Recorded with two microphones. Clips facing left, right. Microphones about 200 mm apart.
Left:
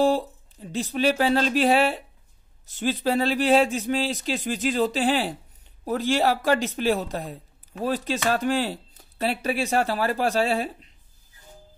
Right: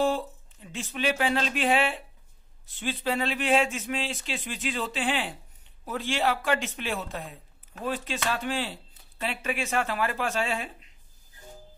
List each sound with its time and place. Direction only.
0.0 s speech: 35° left (ahead or behind)